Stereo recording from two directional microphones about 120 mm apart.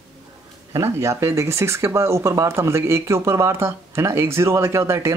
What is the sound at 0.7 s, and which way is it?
Speech, 25° right (ahead or behind).